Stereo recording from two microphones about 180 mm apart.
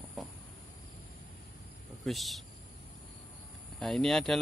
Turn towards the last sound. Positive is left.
turn(degrees=0)  # may be behind; listen again after turning